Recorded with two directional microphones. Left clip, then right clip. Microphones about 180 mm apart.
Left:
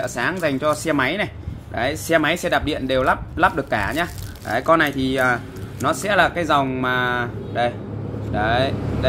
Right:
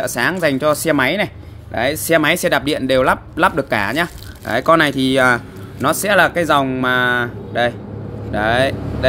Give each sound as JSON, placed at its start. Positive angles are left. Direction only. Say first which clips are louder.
{"t": 0.0, "sound": "speech", "louder": "right 5 dB", "side_deg": -50}